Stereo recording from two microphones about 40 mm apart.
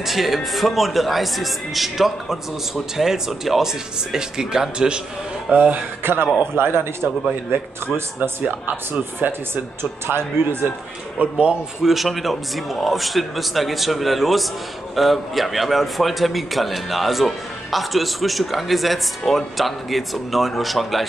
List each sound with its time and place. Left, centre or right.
0.0 s a man's voice: centre; by 5.0 s right
5.5 s speech: right
6.0 s speech: right
6.5 s a man's voice: right
8.2 s speech: right
10.0 s speech: right
11.1 s speech: right
11.8 s a man's voice: centre